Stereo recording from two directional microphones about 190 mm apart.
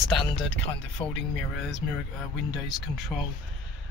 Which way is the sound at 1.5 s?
Centre (ahead or behind).